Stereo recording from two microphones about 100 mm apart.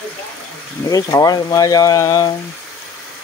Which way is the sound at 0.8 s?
35° left (ahead or behind).